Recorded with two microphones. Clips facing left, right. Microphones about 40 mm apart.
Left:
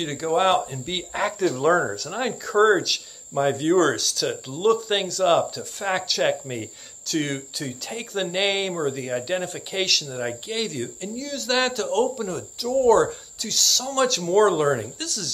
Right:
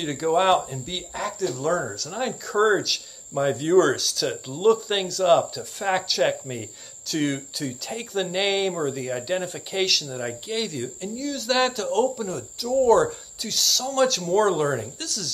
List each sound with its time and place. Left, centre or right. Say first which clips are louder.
0.0 s speech: even; centre
0.7 s speech: left 2 dB; left; by 5.2 s centre
5.2 s speech: right 1 dB; centre
5.9 s speech: right 1 dB; centre
6.2 s speech: left 1 dB; centre
7.1 s speech: right 1 dB; centre
10.1 s speech: left 1 dB; centre